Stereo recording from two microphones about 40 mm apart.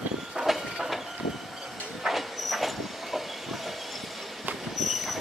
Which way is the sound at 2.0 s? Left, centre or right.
Centre.